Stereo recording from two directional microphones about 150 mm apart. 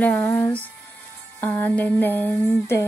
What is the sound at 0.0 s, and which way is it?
Speech, 10° left (ahead or behind).